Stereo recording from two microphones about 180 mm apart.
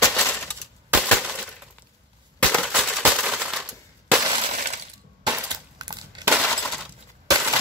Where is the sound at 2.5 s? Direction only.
Centre (ahead or behind).